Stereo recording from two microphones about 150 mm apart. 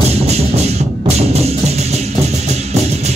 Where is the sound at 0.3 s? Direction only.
45° right (ahead or behind).